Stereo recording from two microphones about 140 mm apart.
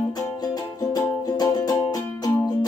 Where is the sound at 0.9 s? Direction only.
30° left (ahead or behind).